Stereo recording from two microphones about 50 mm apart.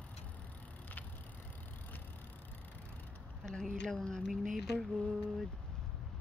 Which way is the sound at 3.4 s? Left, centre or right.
Centre.